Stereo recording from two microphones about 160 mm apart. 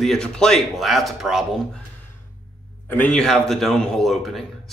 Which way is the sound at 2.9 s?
10° left (ahead or behind).